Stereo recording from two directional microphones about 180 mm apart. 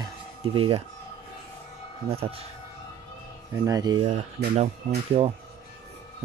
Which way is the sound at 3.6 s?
20° right (ahead or behind).